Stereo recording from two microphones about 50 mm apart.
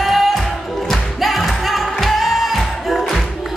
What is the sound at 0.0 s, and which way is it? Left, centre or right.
Music, centre.